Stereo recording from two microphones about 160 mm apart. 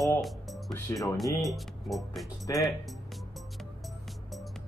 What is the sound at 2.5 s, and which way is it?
Speech, 20° left (ahead or behind).